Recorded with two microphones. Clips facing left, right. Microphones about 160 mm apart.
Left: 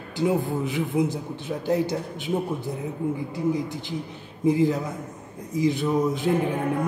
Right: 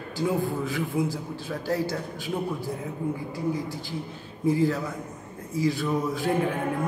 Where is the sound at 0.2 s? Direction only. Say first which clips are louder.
Left 3 dB; 20° left (ahead or behind).